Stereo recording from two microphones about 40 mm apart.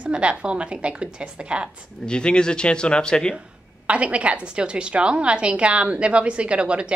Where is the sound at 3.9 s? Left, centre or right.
Right.